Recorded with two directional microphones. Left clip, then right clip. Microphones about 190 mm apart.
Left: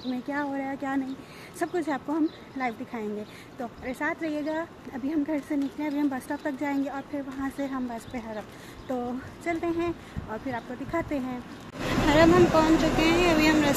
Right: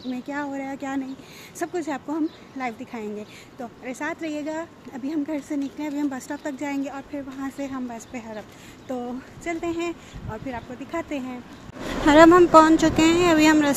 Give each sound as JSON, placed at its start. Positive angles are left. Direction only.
{"t": 0.1, "sound": "a woman's voice", "side_deg": -10}
{"t": 12.1, "sound": "speech", "side_deg": -35}